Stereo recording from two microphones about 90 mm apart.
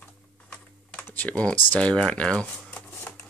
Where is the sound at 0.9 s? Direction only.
20° left (ahead or behind).